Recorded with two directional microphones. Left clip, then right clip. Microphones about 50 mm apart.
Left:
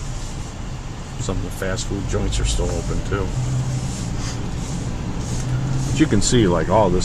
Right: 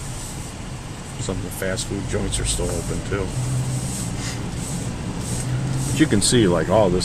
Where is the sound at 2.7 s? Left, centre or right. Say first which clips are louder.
Left 1 dB; centre.